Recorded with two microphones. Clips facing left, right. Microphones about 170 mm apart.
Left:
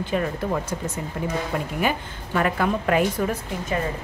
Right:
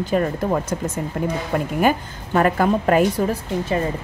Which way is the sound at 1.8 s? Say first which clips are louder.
Right 6 dB; 40° right (ahead or behind).